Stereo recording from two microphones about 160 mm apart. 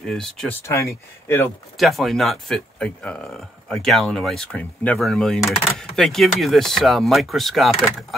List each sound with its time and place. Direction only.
0.0 s speech: 5° left (ahead or behind)
0.7 s speech: 15° left (ahead or behind)
1.8 s speech: centre (ahead or behind)